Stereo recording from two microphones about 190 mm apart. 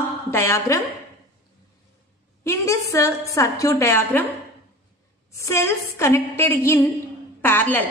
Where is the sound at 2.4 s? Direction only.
15° left (ahead or behind).